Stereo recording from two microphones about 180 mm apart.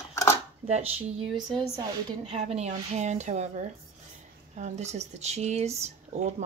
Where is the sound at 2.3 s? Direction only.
35° right (ahead or behind).